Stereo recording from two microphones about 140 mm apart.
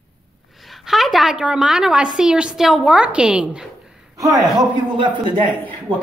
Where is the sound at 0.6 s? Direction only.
Centre (ahead or behind).